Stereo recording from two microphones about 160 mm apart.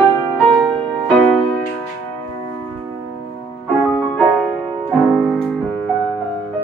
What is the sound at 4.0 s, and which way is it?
Music, centre (ahead or behind).